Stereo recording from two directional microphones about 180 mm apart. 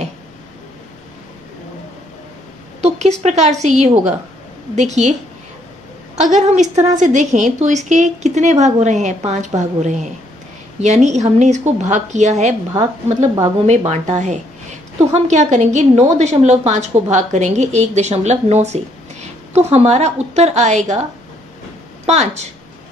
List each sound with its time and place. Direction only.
2.8 s a woman's voice: 35° right (ahead or behind)
6.1 s a woman's voice: 40° right (ahead or behind)
13.7 s a woman's voice: 40° right (ahead or behind)
22.0 s a woman's voice: 40° right (ahead or behind)